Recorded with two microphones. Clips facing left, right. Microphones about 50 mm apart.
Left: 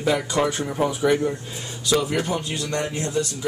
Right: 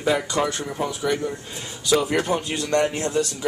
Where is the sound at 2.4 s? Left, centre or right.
Right.